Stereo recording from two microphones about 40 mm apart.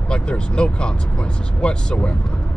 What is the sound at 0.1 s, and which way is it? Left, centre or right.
Speech, left.